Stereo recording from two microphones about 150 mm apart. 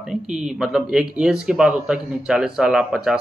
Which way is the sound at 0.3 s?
5° right (ahead or behind).